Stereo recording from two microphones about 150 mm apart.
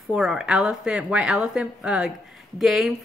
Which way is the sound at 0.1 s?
5° right (ahead or behind).